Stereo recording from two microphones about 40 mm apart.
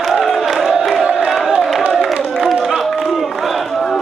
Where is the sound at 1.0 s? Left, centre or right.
Right.